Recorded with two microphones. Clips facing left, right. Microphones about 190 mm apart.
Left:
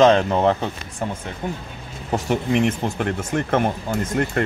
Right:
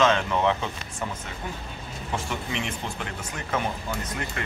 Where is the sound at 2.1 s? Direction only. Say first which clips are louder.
Left 11 dB; 50° left (ahead or behind).